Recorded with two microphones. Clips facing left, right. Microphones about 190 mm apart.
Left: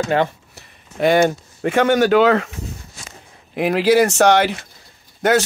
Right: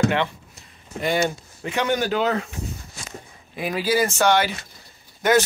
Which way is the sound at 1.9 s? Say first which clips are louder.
Left 8 dB; 75° left (ahead or behind).